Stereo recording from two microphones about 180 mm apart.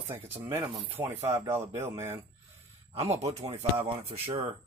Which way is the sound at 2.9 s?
35° right (ahead or behind).